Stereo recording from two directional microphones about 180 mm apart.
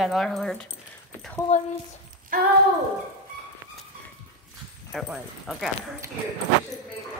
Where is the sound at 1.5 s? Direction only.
40° left (ahead or behind).